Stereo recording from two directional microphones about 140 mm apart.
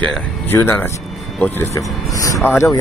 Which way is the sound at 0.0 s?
10° left (ahead or behind).